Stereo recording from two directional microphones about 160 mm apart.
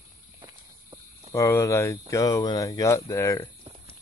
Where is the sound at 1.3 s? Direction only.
15° left (ahead or behind).